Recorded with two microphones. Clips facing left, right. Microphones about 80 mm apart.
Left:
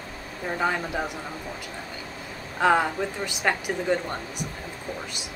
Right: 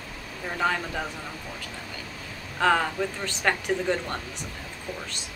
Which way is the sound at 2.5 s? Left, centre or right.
Centre.